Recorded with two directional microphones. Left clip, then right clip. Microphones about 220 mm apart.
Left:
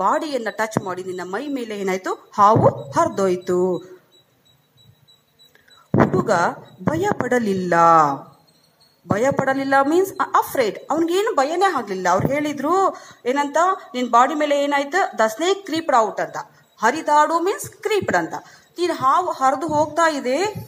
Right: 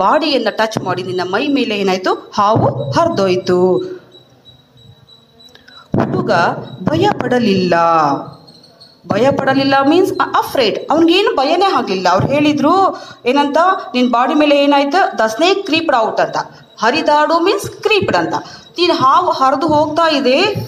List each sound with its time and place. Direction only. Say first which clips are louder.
0.4 s a woman's voice: right 8 dB; 40° left (ahead or behind)
5.9 s a woman's voice: right 3 dB; 40° left (ahead or behind)